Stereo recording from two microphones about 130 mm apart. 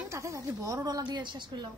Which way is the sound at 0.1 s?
25° right (ahead or behind).